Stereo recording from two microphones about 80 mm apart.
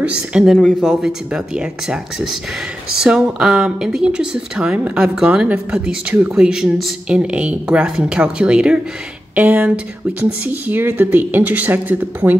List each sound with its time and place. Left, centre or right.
0.0 s speech: centre
0.6 s speech: centre
1.0 s speech: centre